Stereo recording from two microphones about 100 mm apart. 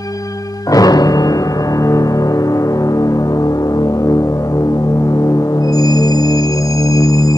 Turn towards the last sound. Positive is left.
turn(degrees=35)  # may be behind; listen again after turning